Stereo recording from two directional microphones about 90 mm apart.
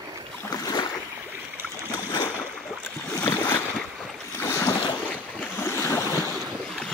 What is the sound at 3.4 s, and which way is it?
Boat, 20° left (ahead or behind).